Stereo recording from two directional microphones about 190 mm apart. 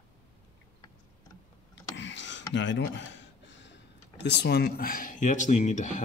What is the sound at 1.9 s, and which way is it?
Speech, 70° left (ahead or behind).